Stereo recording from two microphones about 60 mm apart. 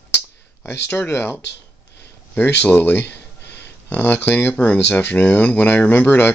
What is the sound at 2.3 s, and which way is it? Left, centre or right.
Speech, left.